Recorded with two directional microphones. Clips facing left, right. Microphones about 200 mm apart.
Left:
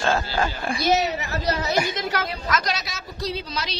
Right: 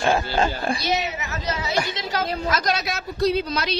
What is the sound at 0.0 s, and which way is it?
Speech, 15° right (ahead or behind).